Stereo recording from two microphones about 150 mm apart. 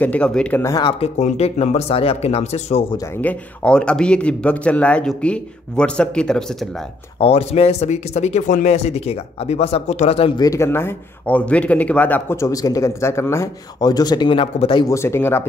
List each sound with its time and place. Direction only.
0.0 s speech: 10° left (ahead or behind)
0.8 s speech: 45° left (ahead or behind)
3.2 s speech: 10° left (ahead or behind)
7.2 s speech: 40° left (ahead or behind)
10.4 s a man's voice: 20° left (ahead or behind)
15.0 s speech: 15° left (ahead or behind)